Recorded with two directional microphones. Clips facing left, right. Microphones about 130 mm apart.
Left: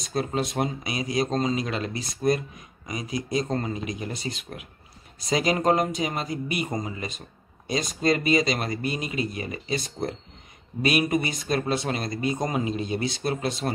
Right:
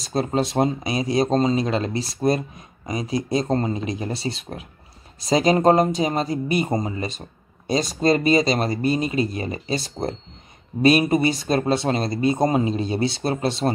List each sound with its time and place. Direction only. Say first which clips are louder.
0.0 s speech: right 5 dB; 30° right (ahead or behind)